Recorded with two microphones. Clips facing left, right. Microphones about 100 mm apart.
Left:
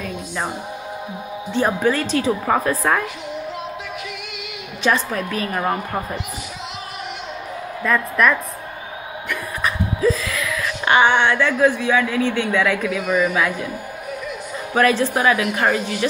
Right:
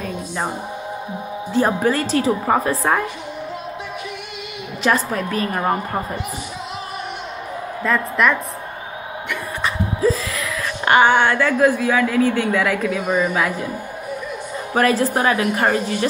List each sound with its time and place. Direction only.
1.5 s a woman's voice: 35° right (ahead or behind)
4.8 s a woman's voice: 30° right (ahead or behind)
7.8 s a woman's voice: 25° right (ahead or behind)
9.3 s a sound: 30° right (ahead or behind)
14.7 s a woman's voice: 35° right (ahead or behind)